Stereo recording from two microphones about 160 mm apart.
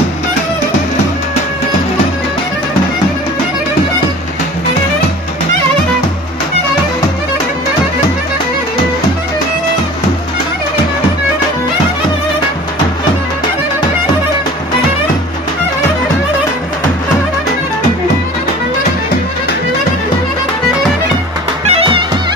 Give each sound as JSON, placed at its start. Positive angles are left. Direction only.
{"t": 21.6, "sound": "music", "side_deg": -35}